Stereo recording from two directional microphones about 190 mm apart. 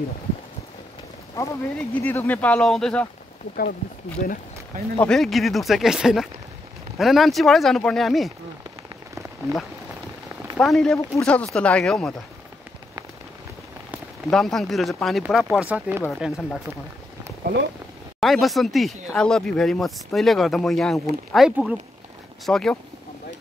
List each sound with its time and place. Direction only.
1.3 s speech: 10° left (ahead or behind)
4.2 s speech: 45° left (ahead or behind)
5.0 s speech: centre (ahead or behind)
9.5 s speech: 15° right (ahead or behind)
10.6 s speech: centre (ahead or behind)
14.3 s speech: centre (ahead or behind)
18.2 s speech: centre (ahead or behind)